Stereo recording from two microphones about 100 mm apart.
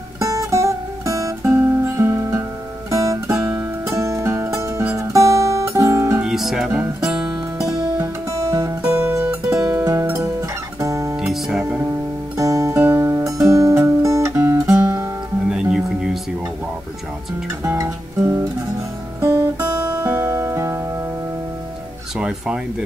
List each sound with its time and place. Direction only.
0.2 s music: 30° right (ahead or behind)
3.4 s music: 15° right (ahead or behind)
3.9 s music: 30° right (ahead or behind)
6.2 s music: 5° right (ahead or behind)
6.7 s music: 20° right (ahead or behind)
7.2 s music: 30° right (ahead or behind)
11.1 s music: 5° right (ahead or behind)
12.4 s music: 35° right (ahead or behind)
15.5 s music: 5° right (ahead or behind)
17.6 s music: 25° right (ahead or behind)
19.2 s guitar: 30° right (ahead or behind)
22.1 s music: 10° right (ahead or behind)